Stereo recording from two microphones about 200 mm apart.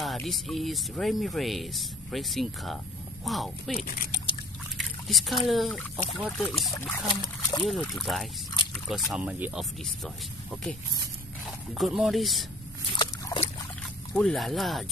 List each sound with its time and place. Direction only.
0.0 s speech: centre (ahead or behind)
3.7 s speech: 45° left (ahead or behind)
4.7 s a sound: centre (ahead or behind)
5.5 s speech: centre (ahead or behind)
7.1 s speech: 20° left (ahead or behind)
7.6 s speech: centre (ahead or behind)
12.9 s dog: 25° left (ahead or behind)
14.1 s speech: centre (ahead or behind)